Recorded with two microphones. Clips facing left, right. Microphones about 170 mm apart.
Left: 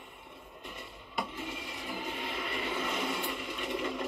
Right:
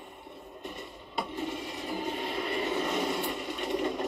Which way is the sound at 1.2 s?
35° right (ahead or behind).